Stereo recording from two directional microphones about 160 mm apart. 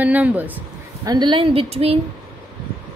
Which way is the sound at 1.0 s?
25° right (ahead or behind).